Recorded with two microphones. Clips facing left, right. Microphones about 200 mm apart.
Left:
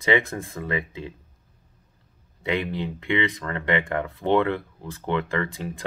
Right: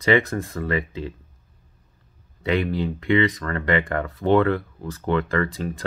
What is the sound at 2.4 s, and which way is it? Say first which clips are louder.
Speech: right 4 dB; 20° left (ahead or behind).